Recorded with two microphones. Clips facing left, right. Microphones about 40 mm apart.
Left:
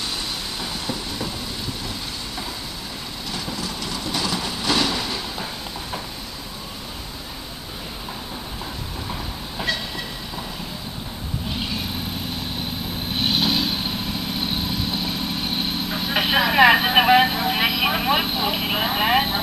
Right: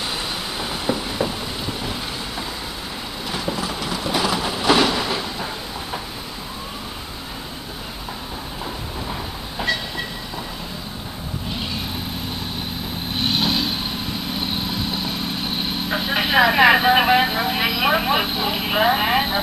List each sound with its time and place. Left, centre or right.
0.6 s vehicle: centre
3.3 s train: centre
9.6 s train: centre
13.1 s vehicle: centre